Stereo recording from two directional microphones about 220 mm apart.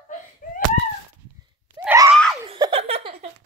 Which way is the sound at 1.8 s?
10° right (ahead or behind).